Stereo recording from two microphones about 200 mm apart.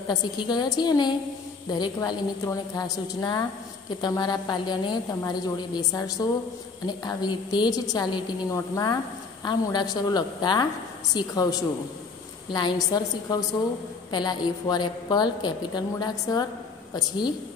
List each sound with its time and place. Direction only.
0.1 s a woman's voice: 20° left (ahead or behind)